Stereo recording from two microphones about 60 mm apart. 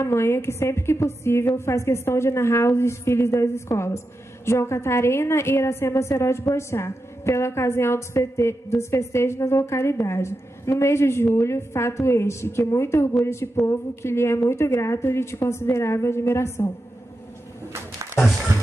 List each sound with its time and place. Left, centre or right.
0.0 s a woman's voice: left